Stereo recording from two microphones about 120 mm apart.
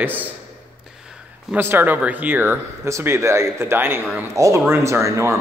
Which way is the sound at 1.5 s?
15° right (ahead or behind).